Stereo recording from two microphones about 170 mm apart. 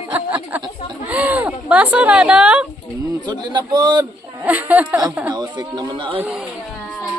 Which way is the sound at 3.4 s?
25° right (ahead or behind).